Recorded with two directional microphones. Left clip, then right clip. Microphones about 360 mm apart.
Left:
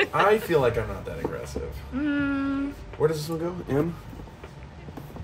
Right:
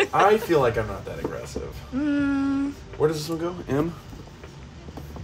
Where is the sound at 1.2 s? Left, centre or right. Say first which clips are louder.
Left 1 dB; centre.